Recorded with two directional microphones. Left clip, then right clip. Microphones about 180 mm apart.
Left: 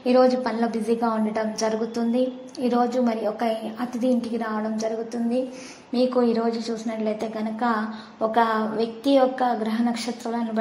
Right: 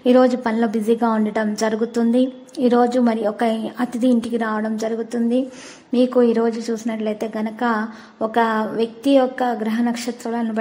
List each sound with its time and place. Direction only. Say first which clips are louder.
0.0 s a woman's voice: right 3 dB; 35° right (ahead or behind)